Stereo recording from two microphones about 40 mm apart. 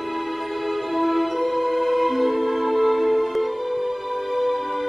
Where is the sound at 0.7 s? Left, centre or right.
Centre.